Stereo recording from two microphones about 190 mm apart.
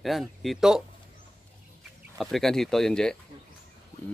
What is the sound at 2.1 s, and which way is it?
Speech, centre (ahead or behind).